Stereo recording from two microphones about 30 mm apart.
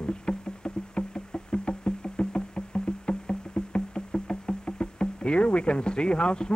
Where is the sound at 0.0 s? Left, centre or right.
Left.